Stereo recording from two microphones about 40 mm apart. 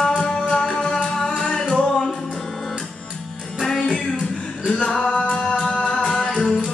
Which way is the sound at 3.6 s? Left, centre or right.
Centre.